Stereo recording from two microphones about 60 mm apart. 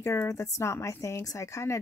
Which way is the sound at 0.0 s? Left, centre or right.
Left.